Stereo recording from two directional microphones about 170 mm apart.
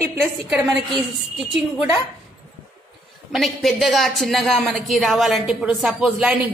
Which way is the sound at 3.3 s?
Centre (ahead or behind).